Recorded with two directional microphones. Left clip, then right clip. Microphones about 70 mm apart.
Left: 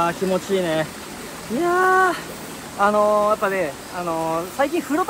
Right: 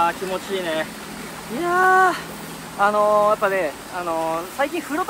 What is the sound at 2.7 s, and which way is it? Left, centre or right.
Speech, centre.